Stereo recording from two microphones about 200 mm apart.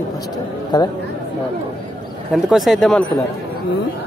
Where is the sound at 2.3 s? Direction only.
Centre (ahead or behind).